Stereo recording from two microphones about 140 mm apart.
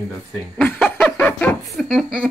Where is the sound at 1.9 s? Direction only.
5° right (ahead or behind).